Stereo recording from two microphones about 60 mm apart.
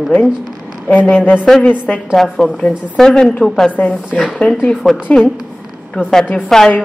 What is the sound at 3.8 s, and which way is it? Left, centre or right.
Speech, left.